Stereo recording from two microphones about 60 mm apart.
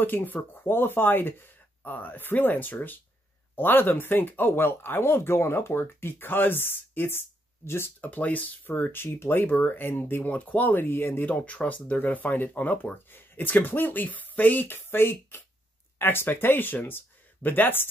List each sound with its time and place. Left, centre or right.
0.0 s speech: left
8.0 s speech: left
8.9 s speech: left
11.4 s speech: left